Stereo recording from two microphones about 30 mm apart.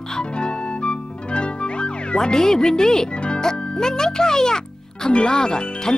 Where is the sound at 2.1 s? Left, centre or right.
Left.